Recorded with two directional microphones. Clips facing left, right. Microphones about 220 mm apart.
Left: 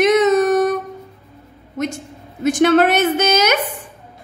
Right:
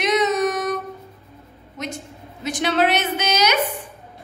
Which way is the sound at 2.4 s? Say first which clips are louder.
Left 8 dB; 50° left (ahead or behind).